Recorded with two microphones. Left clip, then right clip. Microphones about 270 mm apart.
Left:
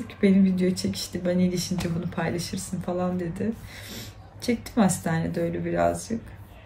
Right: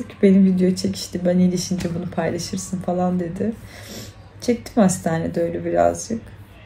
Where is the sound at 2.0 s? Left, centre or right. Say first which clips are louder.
Right 8 dB; centre.